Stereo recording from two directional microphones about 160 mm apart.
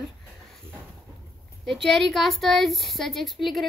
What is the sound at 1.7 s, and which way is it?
Speech, centre (ahead or behind).